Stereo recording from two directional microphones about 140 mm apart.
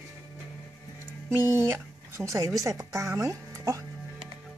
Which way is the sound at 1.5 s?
15° right (ahead or behind).